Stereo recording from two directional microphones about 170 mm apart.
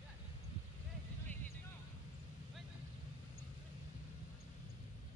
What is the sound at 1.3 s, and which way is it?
Vehicle, 10° left (ahead or behind).